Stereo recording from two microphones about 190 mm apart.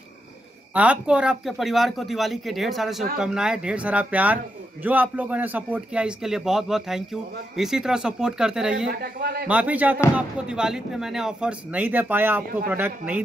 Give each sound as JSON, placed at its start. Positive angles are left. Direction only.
{"t": 0.7, "sound": "speech", "side_deg": -5}
{"t": 8.9, "sound": "a man's voice", "side_deg": -55}
{"t": 9.5, "sound": "speech", "side_deg": -5}